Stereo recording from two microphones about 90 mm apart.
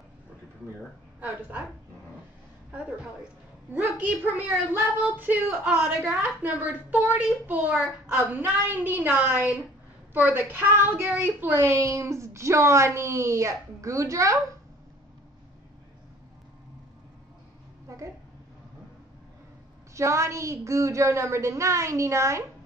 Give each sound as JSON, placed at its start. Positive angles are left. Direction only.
{"t": 3.7, "sound": "a child's voice", "side_deg": -20}
{"t": 17.8, "sound": "a sound", "side_deg": -35}
{"t": 19.9, "sound": "speech", "side_deg": -35}